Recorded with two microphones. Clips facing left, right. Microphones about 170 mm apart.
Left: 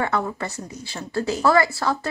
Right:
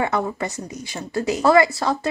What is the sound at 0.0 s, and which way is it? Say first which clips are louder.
A woman's voice: right 2 dB; 15° right (ahead or behind).